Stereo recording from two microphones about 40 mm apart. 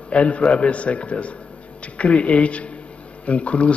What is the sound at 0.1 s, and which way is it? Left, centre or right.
A man's voice, left.